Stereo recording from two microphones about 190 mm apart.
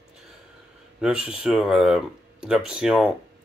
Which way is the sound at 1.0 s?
5° right (ahead or behind).